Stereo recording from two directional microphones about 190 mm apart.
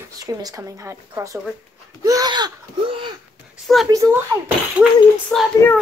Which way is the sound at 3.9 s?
15° right (ahead or behind).